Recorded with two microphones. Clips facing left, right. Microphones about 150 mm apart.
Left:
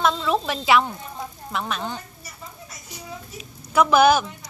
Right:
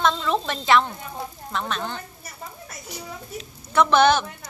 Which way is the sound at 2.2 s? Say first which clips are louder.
Right 2 dB; 55° right (ahead or behind).